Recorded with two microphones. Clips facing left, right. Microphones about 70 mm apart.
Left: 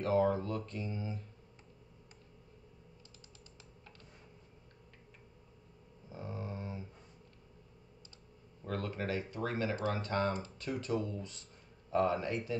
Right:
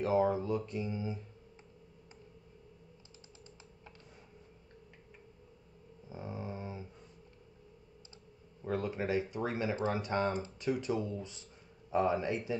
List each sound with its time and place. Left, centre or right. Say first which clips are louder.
0.0 s speech: right 1 dB; centre
6.0 s a sound: right 1 dB; centre
8.6 s speech: right 3 dB; centre
12.2 s speech: right 2 dB; centre